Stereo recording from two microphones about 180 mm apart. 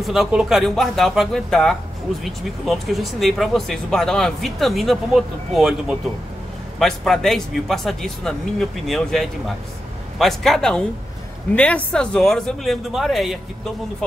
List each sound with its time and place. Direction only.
0.0 s speech: centre (ahead or behind)